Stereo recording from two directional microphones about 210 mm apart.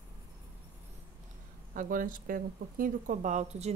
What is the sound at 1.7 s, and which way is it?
Speech, 40° right (ahead or behind).